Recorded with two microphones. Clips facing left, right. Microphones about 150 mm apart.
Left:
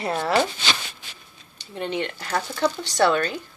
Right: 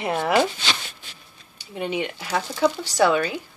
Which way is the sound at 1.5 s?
10° right (ahead or behind).